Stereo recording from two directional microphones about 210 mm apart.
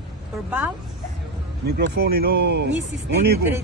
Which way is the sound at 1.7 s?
45° right (ahead or behind).